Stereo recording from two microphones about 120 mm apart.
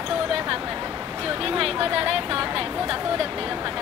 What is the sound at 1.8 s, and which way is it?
Speech, 50° right (ahead or behind).